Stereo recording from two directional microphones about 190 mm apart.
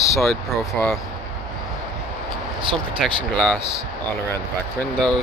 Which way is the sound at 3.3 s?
5° left (ahead or behind).